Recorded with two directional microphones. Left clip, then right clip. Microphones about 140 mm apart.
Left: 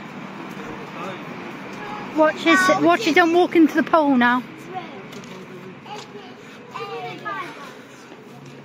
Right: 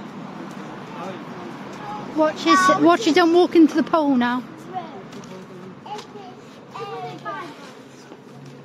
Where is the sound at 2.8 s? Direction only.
40° right (ahead or behind).